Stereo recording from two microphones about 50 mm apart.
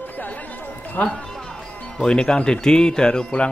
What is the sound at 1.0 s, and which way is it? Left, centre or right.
Speech, centre.